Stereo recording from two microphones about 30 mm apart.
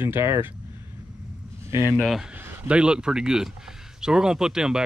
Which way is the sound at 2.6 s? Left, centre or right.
Right.